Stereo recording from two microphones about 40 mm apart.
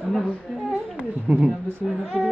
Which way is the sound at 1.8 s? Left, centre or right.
Centre.